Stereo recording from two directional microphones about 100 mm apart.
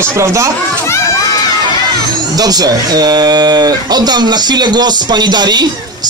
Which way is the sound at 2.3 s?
40° right (ahead or behind).